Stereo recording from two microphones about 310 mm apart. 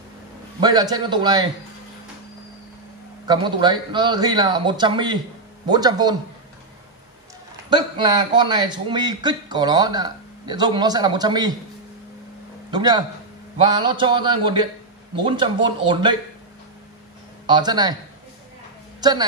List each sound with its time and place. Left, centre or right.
0.6 s a man's voice: centre
3.3 s a man's voice: centre
7.7 s a man's voice: centre
12.7 s a man's voice: centre
17.5 s a man's voice: centre
18.9 s a woman's voice: centre